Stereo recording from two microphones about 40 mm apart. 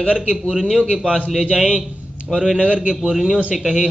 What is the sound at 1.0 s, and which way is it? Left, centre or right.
Speech, right.